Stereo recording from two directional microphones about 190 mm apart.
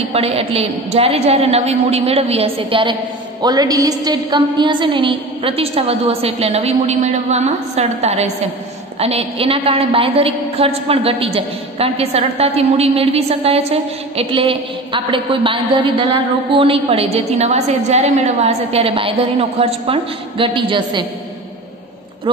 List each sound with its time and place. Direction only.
0.1 s a woman's voice: 30° right (ahead or behind)